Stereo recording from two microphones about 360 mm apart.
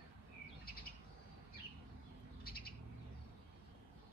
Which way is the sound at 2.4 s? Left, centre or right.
Left.